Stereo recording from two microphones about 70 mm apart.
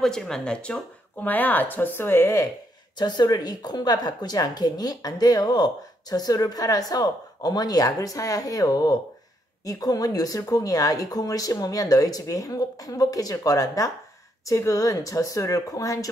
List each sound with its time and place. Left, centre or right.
0.0 s speech: centre; by 2.5 s left
3.0 s speech: left